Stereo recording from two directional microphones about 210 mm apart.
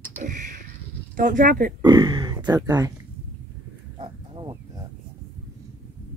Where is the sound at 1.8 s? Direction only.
20° right (ahead or behind).